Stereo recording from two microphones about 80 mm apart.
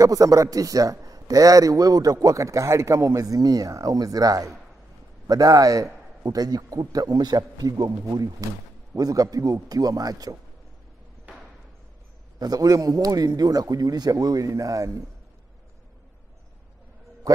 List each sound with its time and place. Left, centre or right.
0.0 s a man's voice: right
12.4 s a man's voice: right